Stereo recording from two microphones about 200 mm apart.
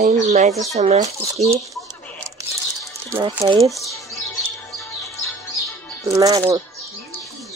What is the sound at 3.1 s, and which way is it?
Speech, 20° right (ahead or behind).